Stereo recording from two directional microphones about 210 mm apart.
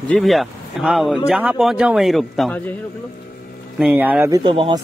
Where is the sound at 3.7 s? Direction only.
5° right (ahead or behind).